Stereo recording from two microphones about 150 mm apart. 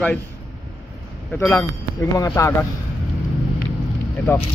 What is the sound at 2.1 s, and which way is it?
Speech, 20° left (ahead or behind).